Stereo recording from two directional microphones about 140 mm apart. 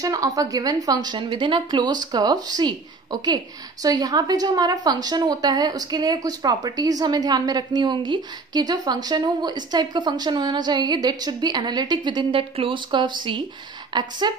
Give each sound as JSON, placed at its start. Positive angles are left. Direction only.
{"t": 0.0, "sound": "a woman's voice", "side_deg": -25}